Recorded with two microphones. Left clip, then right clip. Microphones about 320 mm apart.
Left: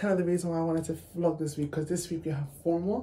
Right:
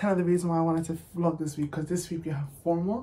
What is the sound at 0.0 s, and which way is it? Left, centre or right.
Speech, centre.